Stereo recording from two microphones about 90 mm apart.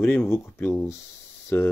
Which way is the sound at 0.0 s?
20° left (ahead or behind).